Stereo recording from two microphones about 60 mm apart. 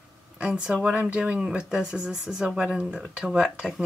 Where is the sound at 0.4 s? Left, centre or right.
Centre.